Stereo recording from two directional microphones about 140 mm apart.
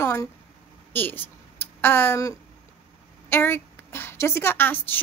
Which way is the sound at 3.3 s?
15° left (ahead or behind).